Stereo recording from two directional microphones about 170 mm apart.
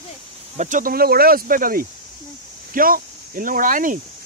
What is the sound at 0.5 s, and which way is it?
Speech, 45° right (ahead or behind).